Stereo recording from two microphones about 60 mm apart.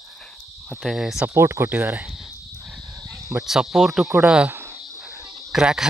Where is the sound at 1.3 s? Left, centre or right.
Right.